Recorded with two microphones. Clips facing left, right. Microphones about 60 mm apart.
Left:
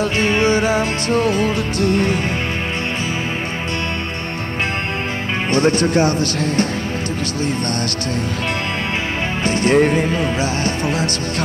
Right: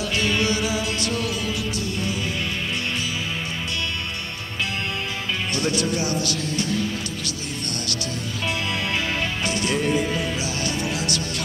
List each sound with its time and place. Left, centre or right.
0.0 s music: left
5.5 s speech: left
9.4 s music: left